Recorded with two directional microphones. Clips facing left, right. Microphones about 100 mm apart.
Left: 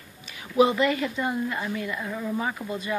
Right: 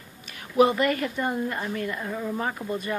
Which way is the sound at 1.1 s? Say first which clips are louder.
Even; 40° right (ahead or behind).